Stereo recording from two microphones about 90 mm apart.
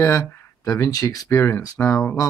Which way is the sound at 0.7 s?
35° left (ahead or behind).